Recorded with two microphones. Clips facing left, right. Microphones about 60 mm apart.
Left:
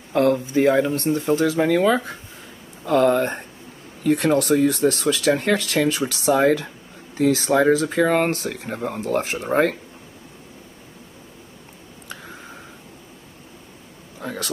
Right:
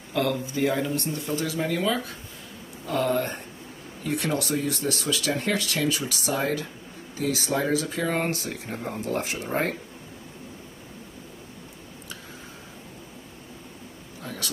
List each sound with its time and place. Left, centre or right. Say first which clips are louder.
0.1 s speech: left 8 dB; left
5.3 s speech: left 7 dB; left
8.0 s speech: left 8 dB; left
9.5 s speech: left 8 dB; left
14.2 s a sound: left 6 dB; left